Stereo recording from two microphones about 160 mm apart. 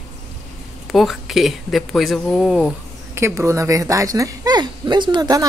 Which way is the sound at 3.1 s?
15° right (ahead or behind).